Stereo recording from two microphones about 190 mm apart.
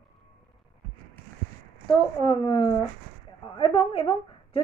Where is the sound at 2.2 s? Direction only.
25° left (ahead or behind).